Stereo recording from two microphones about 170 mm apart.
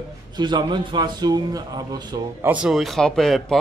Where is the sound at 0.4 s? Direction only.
25° right (ahead or behind).